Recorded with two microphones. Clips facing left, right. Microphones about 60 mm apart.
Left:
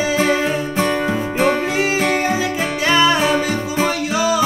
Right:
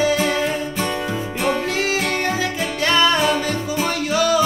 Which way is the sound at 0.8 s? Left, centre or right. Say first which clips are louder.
Left 5 dB; left.